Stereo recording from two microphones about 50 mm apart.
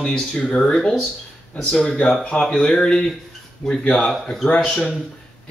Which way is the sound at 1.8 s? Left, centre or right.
Centre.